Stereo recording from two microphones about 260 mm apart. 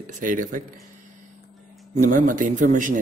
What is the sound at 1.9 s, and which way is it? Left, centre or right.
Speech, right.